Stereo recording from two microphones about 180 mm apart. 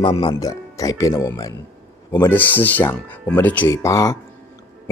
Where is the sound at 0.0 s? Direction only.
25° left (ahead or behind).